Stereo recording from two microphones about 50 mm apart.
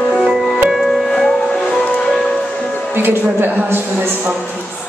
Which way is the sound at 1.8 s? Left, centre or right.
Left.